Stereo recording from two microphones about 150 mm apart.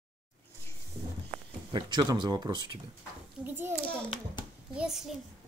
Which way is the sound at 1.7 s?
30° right (ahead or behind).